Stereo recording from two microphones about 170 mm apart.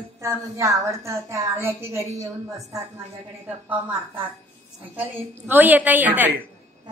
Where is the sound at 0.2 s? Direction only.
15° right (ahead or behind).